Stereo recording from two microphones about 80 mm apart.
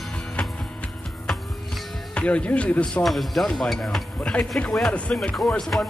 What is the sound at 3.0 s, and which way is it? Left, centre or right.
Speech, centre.